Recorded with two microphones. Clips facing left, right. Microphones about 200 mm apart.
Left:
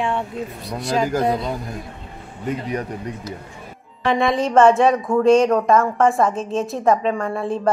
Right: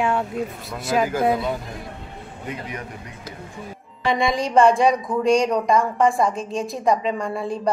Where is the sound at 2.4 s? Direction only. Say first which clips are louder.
Left 8 dB; 35° left (ahead or behind).